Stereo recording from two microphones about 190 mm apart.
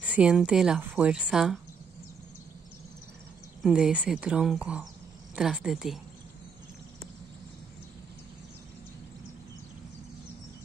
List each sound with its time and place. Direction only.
0.0 s a woman's voice: 5° right (ahead or behind)
3.6 s a woman's voice: 5° right (ahead or behind)